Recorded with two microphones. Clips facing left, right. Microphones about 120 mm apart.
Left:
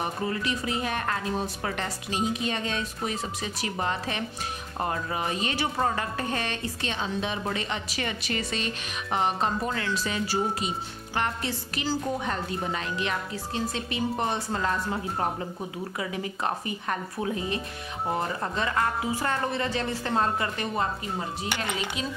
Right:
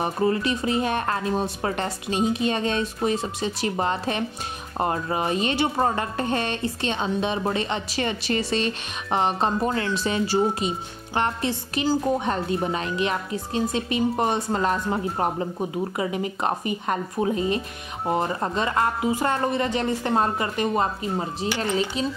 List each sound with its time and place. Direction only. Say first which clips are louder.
0.0 s speech: right 7 dB; 25° right (ahead or behind)